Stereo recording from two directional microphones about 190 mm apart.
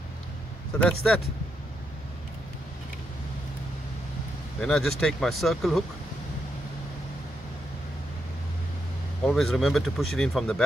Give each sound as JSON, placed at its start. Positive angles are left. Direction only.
{"t": 0.7, "sound": "speech", "side_deg": 5}
{"t": 4.6, "sound": "speech", "side_deg": 0}
{"t": 9.2, "sound": "speech", "side_deg": 5}